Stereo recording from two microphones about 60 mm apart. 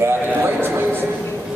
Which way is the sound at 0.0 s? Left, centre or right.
Right.